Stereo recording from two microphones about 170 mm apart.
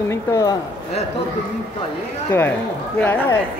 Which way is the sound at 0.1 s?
20° left (ahead or behind).